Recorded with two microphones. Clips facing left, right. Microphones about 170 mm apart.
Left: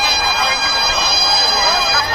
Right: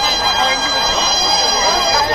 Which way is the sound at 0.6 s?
10° left (ahead or behind).